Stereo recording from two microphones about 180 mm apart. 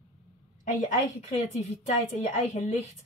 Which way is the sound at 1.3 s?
40° left (ahead or behind).